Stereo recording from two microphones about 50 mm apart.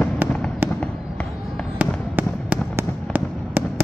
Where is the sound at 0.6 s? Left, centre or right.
Right.